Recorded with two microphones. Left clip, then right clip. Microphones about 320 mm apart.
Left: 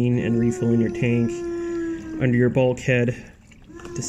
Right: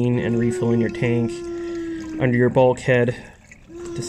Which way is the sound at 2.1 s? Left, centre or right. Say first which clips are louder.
Right 2 dB; centre.